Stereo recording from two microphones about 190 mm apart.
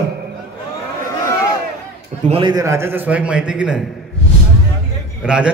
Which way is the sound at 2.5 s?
15° right (ahead or behind).